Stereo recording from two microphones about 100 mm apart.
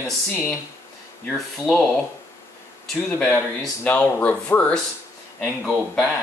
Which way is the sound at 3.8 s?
15° left (ahead or behind).